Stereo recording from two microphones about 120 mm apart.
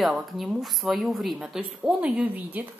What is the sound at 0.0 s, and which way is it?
A woman's voice, 5° right (ahead or behind).